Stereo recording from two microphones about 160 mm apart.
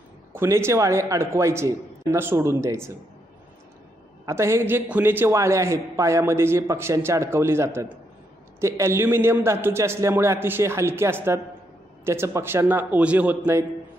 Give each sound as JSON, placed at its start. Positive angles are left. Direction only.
{"t": 0.3, "sound": "a man's voice", "side_deg": -15}
{"t": 4.3, "sound": "a man's voice", "side_deg": -15}